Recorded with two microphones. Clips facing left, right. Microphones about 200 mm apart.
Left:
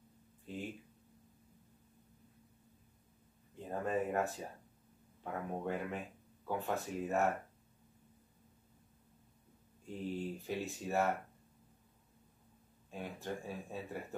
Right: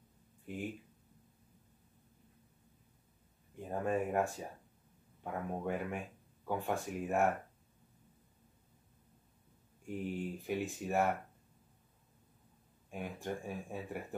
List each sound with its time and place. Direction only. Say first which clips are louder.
0.5 s speech: right 1 dB; 15° right (ahead or behind)
3.5 s a sound: right 1 dB; 15° right (ahead or behind)
5.2 s speech: right 1 dB; 15° right (ahead or behind)
9.8 s speech: right 1 dB; 15° right (ahead or behind)
12.9 s speech: right 2 dB; 15° right (ahead or behind)